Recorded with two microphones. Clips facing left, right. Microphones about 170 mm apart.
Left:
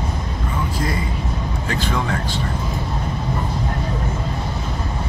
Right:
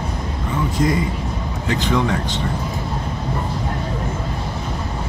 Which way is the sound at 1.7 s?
20° right (ahead or behind).